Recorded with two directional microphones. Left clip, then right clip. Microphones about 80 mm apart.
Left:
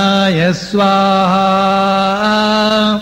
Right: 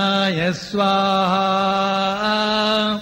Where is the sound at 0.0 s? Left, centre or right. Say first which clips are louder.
Left 6 dB; right.